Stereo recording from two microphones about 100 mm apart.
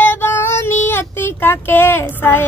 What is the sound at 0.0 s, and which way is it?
Child singing, 20° left (ahead or behind).